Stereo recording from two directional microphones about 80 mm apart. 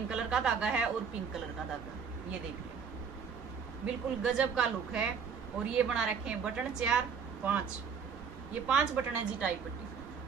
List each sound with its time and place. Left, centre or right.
0.1 s a woman's voice: centre
3.8 s a woman's voice: centre
8.6 s a woman's voice: centre